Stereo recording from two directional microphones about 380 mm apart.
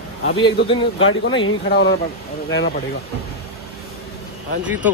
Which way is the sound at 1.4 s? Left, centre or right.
Left.